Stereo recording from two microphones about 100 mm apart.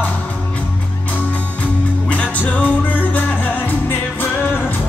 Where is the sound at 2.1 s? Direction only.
15° left (ahead or behind).